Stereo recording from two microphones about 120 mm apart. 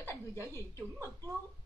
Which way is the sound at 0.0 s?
25° left (ahead or behind).